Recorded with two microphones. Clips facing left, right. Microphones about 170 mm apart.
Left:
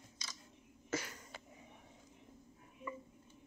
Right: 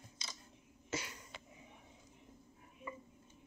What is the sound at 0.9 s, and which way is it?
Cough, 50° left (ahead or behind).